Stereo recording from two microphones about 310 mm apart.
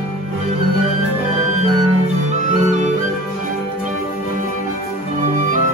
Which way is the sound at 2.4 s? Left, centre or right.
Right.